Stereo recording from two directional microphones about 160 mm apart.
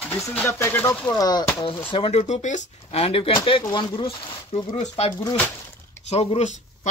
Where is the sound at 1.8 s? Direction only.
35° left (ahead or behind).